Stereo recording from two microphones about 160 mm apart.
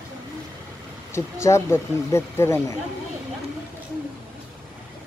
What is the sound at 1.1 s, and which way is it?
Speech, 15° left (ahead or behind).